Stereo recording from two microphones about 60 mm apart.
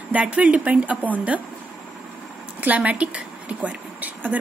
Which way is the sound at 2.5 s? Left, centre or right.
Right.